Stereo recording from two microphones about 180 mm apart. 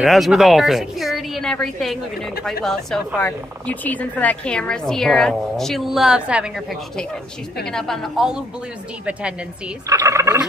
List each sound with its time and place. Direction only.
0.0 s speech: centre (ahead or behind)
9.8 s gobble: 15° right (ahead or behind)